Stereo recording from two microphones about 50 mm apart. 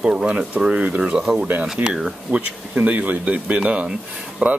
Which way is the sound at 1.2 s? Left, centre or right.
Centre.